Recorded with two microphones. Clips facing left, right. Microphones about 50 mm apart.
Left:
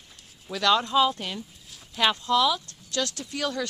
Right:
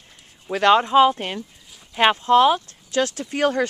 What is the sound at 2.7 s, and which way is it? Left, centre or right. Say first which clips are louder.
Speech: right 7 dB; right.